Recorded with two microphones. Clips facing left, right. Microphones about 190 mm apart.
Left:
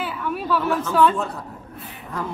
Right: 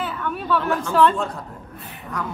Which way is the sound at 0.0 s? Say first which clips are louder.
Left 1 dB; 5° left (ahead or behind).